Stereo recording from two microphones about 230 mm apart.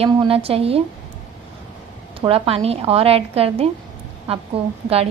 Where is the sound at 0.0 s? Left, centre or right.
Right.